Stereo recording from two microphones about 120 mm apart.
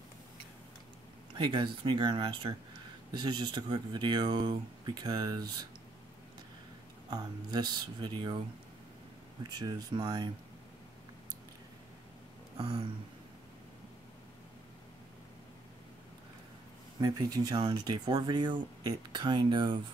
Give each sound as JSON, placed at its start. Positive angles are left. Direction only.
{"t": 1.3, "sound": "speech", "side_deg": -40}
{"t": 7.1, "sound": "speech", "side_deg": -35}
{"t": 9.4, "sound": "speech", "side_deg": -35}
{"t": 17.0, "sound": "speech", "side_deg": -35}